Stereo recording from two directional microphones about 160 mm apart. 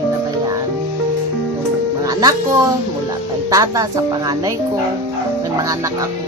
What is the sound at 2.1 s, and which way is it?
Music, 25° right (ahead or behind).